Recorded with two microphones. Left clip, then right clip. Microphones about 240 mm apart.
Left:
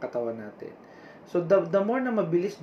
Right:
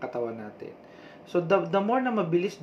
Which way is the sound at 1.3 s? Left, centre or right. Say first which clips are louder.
Left 2 dB; centre.